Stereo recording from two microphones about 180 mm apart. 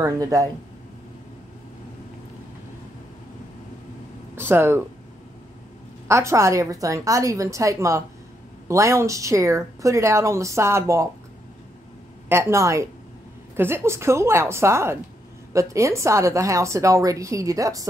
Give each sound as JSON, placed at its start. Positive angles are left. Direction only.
{"t": 0.0, "sound": "speech", "side_deg": -20}
{"t": 4.4, "sound": "a woman's voice", "side_deg": -10}
{"t": 6.0, "sound": "a woman's voice", "side_deg": -15}
{"t": 12.3, "sound": "a woman's voice", "side_deg": -15}